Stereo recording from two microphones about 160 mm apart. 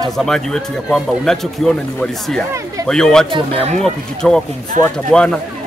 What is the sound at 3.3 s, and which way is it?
Speech, 35° right (ahead or behind).